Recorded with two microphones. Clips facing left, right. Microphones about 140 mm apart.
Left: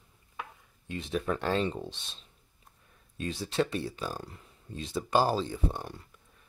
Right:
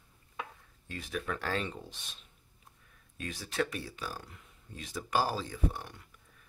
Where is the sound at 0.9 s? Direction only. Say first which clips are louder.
Left 6 dB; 25° left (ahead or behind).